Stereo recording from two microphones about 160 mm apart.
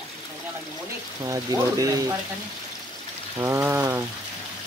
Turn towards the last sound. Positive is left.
turn(degrees=-15)  # may be behind; listen again after turning